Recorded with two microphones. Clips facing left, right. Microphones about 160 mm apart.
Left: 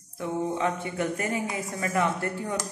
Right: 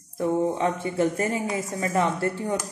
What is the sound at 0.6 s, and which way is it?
A woman's voice, 30° right (ahead or behind).